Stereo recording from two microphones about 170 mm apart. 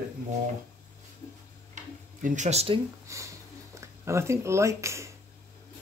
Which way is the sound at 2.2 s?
45° right (ahead or behind).